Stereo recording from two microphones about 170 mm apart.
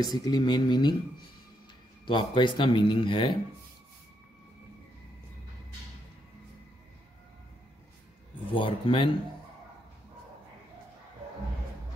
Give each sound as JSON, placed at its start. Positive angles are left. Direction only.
{"t": 0.0, "sound": "speech", "side_deg": 25}
{"t": 2.0, "sound": "speech", "side_deg": 30}
{"t": 8.5, "sound": "speech", "side_deg": 30}